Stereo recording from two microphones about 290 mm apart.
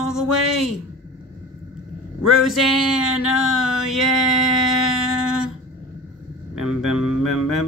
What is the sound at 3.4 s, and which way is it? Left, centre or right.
Speech, centre.